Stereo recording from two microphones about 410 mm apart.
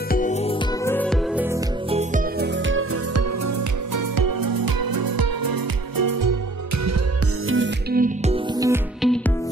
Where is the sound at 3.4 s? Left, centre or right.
Right.